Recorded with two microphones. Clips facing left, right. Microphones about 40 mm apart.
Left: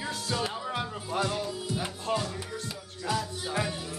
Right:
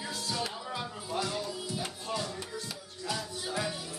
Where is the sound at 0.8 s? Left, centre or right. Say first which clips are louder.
Left 3 dB; left.